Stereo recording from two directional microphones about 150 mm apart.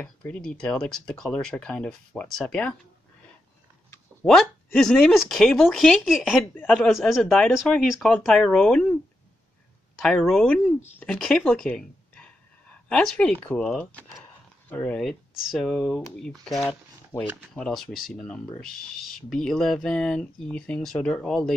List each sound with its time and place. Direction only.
0.0 s speech: 10° left (ahead or behind)
4.3 s speech: 5° left (ahead or behind)
10.0 s speech: 5° left (ahead or behind)
14.7 s speech: 10° left (ahead or behind)
17.1 s speech: 20° left (ahead or behind)
17.6 s speech: 5° left (ahead or behind)